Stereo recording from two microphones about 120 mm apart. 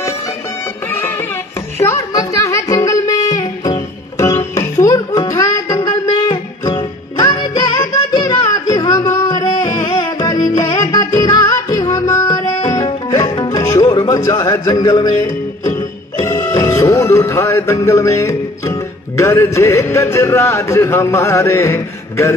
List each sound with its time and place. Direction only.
0.8 s music: 20° left (ahead or behind)